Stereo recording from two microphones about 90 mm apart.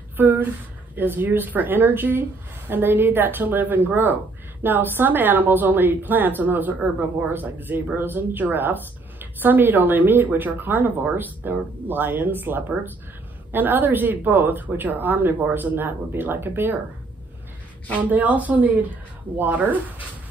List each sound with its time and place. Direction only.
0.2 s a woman's voice: 20° right (ahead or behind)
18.1 s a woman's voice: 15° right (ahead or behind)